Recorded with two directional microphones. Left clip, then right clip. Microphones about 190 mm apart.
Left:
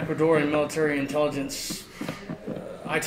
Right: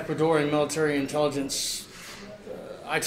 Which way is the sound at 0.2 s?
30° right (ahead or behind).